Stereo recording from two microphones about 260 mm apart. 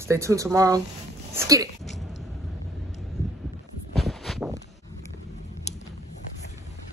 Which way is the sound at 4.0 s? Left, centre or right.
Centre.